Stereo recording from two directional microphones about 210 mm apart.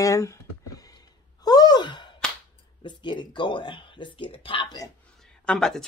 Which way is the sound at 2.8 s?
20° left (ahead or behind).